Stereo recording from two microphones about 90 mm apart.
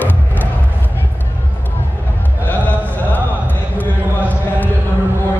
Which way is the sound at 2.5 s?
20° left (ahead or behind).